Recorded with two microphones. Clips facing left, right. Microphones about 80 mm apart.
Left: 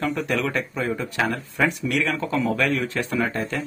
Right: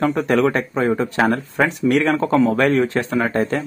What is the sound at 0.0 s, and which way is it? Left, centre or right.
A man's voice, right.